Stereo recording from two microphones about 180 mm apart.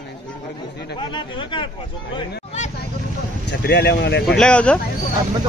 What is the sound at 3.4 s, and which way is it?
Speech, 65° left (ahead or behind).